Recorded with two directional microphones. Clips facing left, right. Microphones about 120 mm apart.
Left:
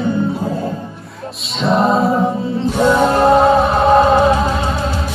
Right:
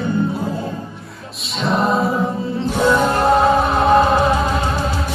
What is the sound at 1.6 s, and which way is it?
Music, centre (ahead or behind).